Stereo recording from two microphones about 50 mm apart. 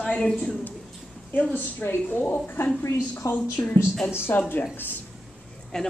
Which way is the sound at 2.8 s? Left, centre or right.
Left.